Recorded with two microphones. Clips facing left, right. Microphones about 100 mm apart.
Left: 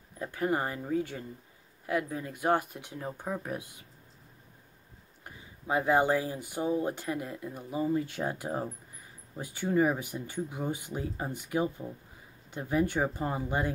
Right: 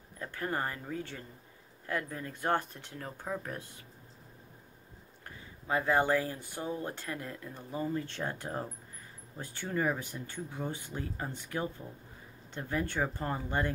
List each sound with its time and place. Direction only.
0.2 s speech: 15° left (ahead or behind)
5.2 s speech: 15° left (ahead or behind)